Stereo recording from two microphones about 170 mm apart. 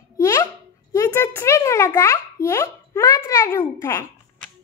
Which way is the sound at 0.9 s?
15° left (ahead or behind).